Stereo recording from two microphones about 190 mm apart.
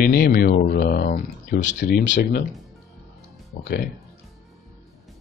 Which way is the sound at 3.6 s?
55° left (ahead or behind).